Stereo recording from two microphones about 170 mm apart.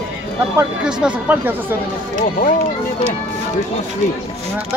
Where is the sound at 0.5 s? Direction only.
5° right (ahead or behind).